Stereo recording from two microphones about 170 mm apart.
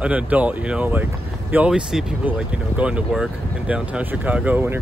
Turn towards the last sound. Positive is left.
turn(degrees=-10)  # may be behind; listen again after turning